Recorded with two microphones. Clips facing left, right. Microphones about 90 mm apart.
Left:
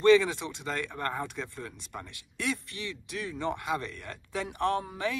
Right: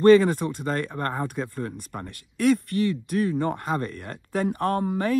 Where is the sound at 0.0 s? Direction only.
50° right (ahead or behind).